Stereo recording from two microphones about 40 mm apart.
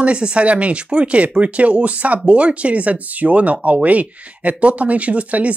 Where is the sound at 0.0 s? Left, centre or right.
Right.